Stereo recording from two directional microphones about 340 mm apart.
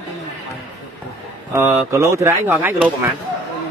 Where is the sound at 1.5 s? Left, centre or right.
Centre.